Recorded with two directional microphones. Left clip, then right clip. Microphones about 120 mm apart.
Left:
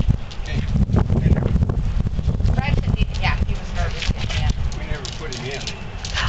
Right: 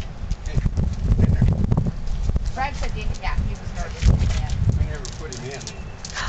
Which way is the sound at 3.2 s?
10° left (ahead or behind).